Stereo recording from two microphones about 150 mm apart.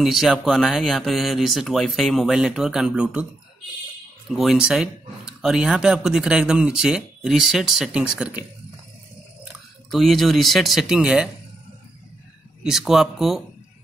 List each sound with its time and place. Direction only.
0.0 s speech: centre (ahead or behind)
4.3 s speech: centre (ahead or behind)
9.8 s speech: centre (ahead or behind)
12.6 s speech: centre (ahead or behind)